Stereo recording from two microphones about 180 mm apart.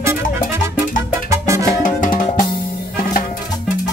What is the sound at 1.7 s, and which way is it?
Music, 50° left (ahead or behind).